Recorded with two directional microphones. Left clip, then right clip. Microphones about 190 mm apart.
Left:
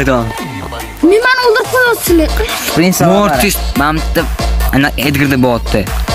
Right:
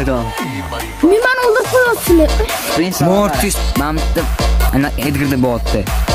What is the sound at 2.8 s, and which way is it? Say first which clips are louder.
Speech: left 8 dB; 45° left (ahead or behind).